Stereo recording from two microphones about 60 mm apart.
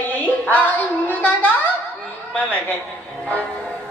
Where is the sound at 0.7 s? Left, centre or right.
Left.